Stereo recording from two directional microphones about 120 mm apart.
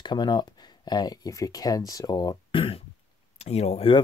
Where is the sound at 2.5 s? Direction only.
50° left (ahead or behind).